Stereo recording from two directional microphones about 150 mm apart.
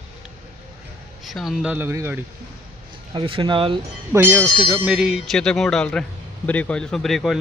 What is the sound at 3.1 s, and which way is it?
Speech, 35° right (ahead or behind).